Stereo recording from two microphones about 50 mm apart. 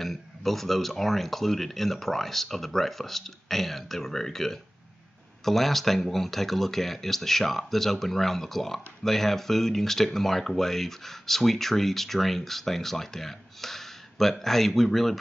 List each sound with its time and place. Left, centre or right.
0.0 s speech: centre